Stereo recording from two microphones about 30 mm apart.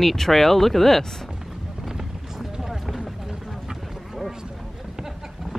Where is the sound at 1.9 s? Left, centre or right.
Centre.